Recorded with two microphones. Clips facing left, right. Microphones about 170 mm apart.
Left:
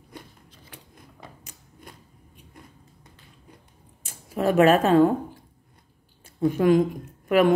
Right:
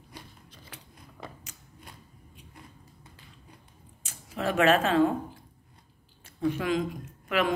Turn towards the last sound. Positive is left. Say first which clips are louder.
# left 8 dB
turn(degrees=50)  # may be behind; listen again after turning